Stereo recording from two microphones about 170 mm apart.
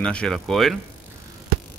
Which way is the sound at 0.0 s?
5° left (ahead or behind).